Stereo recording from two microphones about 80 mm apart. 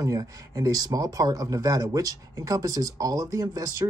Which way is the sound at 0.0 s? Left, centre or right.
Right.